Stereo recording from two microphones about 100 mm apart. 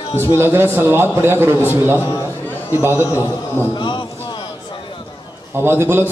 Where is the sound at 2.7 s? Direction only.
25° right (ahead or behind).